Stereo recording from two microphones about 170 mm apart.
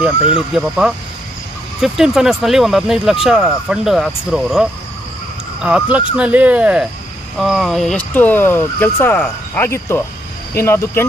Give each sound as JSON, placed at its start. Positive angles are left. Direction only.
{"t": 0.6, "sound": "speech", "side_deg": -5}